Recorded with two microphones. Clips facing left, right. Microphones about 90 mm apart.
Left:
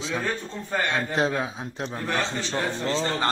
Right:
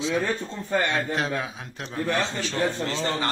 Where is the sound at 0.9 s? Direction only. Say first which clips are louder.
Left 2 dB; 25° left (ahead or behind).